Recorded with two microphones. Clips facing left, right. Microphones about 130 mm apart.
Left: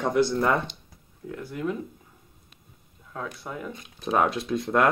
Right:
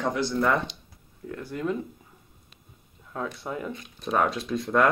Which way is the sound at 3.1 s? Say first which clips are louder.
Right 3 dB; 5° right (ahead or behind).